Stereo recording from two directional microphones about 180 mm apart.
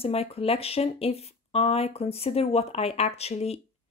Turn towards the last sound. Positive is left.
turn(degrees=35)  # may be behind; listen again after turning